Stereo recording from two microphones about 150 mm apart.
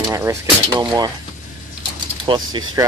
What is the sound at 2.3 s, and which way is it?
Speech, 30° right (ahead or behind).